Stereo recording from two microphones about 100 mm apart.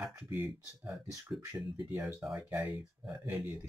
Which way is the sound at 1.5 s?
15° right (ahead or behind).